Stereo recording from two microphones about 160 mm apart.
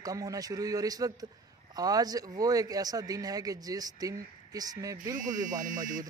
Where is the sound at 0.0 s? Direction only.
20° right (ahead or behind).